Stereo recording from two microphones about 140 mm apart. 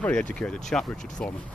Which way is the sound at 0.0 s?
10° left (ahead or behind).